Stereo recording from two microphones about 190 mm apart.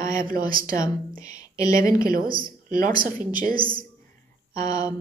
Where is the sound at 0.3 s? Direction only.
50° right (ahead or behind).